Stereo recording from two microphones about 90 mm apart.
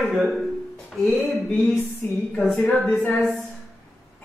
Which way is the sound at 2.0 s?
15° left (ahead or behind).